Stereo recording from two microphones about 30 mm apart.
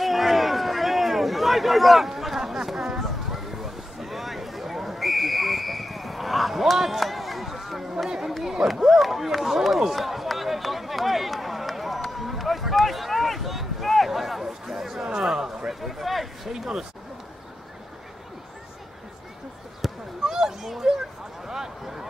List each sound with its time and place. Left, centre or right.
0.0 s run: centre
6.8 s a sound: centre
8.6 s run: centre
15.1 s speech: centre
15.7 s speech: centre
16.4 s speech: centre
19.8 s a sound: centre
20.2 s a sound: centre
21.5 s speech: centre